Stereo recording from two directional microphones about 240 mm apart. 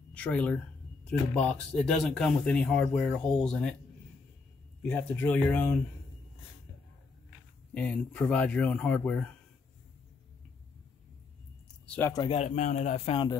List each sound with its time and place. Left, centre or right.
0.1 s speech: centre
4.8 s speech: centre
7.7 s speech: centre
11.9 s a man's voice: centre